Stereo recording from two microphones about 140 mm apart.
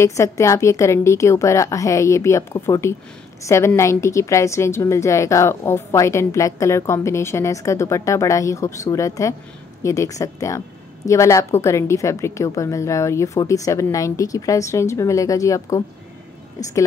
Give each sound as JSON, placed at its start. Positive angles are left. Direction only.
{"t": 0.0, "sound": "a woman's voice", "side_deg": 20}